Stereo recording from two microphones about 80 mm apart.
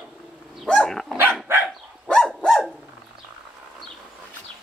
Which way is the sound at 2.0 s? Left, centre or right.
Centre.